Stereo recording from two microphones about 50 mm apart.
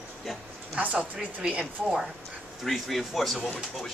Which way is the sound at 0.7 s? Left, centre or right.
Right.